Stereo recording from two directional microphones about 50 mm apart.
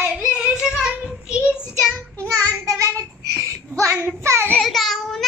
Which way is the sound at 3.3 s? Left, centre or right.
Right.